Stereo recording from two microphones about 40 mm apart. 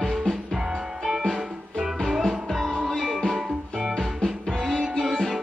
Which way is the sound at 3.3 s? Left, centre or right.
Centre.